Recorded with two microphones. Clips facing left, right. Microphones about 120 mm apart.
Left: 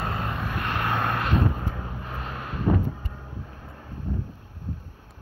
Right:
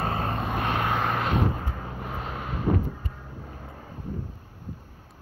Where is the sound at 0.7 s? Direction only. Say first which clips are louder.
Left 1 dB; 15° right (ahead or behind).